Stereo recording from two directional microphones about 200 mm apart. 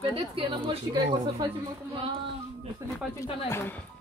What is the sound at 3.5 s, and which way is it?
Speech, 10° left (ahead or behind).